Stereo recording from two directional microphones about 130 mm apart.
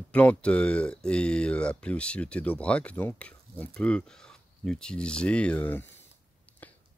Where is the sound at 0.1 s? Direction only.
10° left (ahead or behind).